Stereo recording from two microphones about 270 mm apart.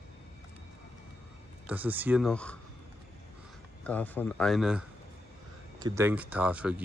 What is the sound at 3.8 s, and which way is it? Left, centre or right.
Speech, centre.